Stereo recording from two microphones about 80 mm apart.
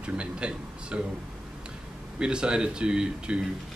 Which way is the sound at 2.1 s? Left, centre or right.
Centre.